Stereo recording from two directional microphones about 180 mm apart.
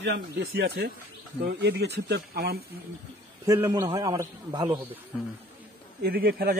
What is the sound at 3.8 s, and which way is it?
Speech, 20° right (ahead or behind).